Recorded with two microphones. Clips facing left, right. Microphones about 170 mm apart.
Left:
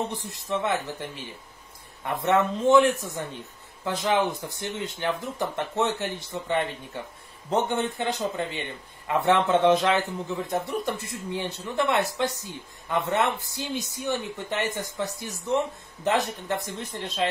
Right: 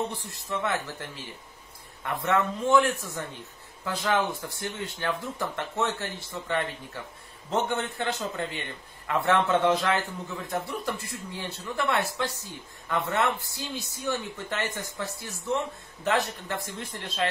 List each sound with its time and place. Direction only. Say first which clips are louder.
0.1 s a man's voice: left 4 dB; 20° left (ahead or behind)